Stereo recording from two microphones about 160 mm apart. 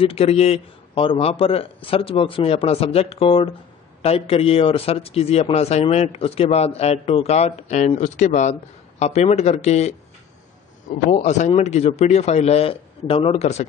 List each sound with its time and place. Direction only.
0.0 s a man's voice: 40° left (ahead or behind)